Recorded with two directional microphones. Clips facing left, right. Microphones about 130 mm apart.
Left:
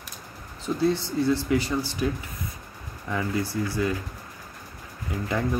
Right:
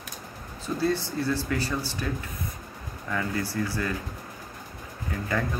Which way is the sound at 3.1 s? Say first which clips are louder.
Left 2 dB; 15° left (ahead or behind).